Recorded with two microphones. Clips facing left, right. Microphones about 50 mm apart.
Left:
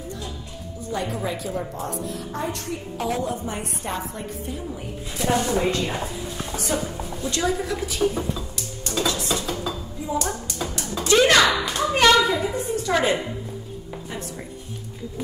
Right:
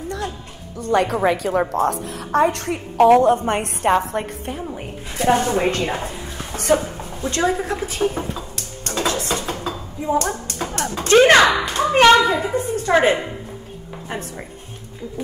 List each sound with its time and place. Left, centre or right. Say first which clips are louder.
0.7 s a woman's voice: right 10 dB; right
4.6 s a woman's voice: right 3 dB; right
6.5 s a sound: right 9 dB; right
12.9 s a woman's voice: right 6 dB; right